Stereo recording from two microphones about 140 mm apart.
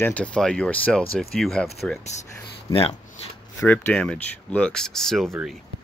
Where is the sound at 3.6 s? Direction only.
15° left (ahead or behind).